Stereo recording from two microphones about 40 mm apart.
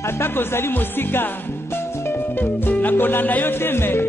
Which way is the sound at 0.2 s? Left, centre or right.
Left.